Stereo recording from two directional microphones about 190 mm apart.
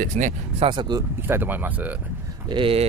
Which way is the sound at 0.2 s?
40° right (ahead or behind).